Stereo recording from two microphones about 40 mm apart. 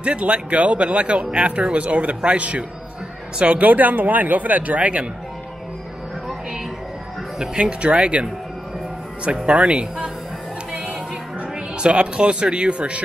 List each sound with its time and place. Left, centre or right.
0.0 s speech: right
3.6 s speech: right
7.5 s speech: right
11.8 s speech: right